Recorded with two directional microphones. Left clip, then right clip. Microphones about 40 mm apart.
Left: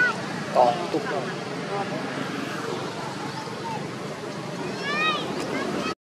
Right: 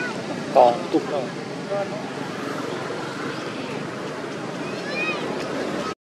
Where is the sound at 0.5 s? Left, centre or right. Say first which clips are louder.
Right 4 dB; centre.